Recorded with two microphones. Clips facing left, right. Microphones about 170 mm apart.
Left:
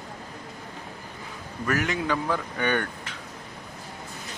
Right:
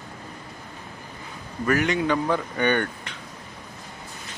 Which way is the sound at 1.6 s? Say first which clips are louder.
Right 4 dB; centre (ahead or behind).